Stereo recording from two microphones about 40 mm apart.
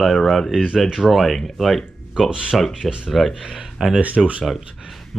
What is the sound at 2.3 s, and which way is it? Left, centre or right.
Speech, right.